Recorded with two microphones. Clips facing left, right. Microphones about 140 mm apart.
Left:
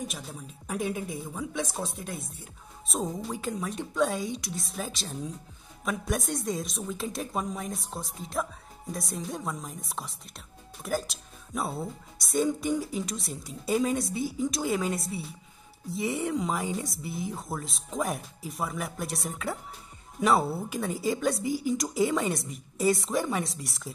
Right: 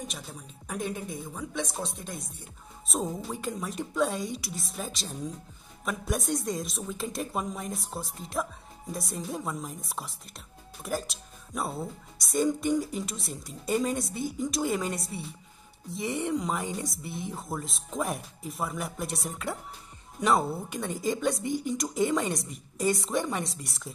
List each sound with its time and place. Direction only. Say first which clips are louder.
0.0 s speech: left 3 dB; centre (ahead or behind)